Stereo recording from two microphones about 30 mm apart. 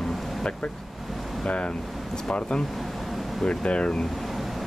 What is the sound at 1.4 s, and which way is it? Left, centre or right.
Speech, left.